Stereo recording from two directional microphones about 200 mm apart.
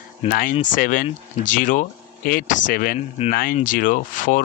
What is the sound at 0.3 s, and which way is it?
A man's voice, 45° left (ahead or behind).